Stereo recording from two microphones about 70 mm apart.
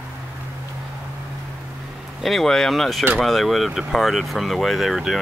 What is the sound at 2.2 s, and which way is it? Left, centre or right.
Speech, centre.